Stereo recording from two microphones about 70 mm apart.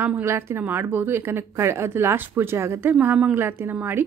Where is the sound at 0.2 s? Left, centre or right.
Right.